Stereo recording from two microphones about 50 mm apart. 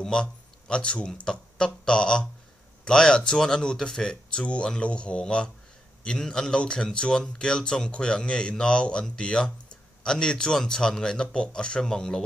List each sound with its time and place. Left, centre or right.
0.0 s speech: centre